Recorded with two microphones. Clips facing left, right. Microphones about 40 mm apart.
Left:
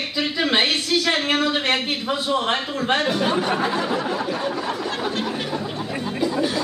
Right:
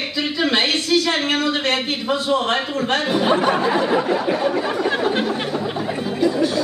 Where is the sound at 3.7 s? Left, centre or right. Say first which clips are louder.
Right 5 dB; right.